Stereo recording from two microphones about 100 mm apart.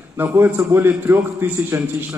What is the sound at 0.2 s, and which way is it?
A man's voice, 20° right (ahead or behind).